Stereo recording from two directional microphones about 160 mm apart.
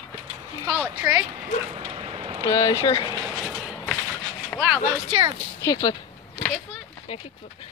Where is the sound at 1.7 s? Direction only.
35° right (ahead or behind).